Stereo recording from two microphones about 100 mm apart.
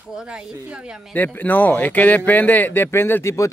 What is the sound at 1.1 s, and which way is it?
A man's voice, 20° left (ahead or behind).